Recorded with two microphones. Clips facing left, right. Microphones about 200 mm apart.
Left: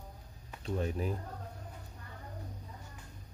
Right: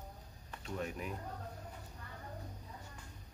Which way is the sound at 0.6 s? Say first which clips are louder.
Left 6 dB; 30° left (ahead or behind).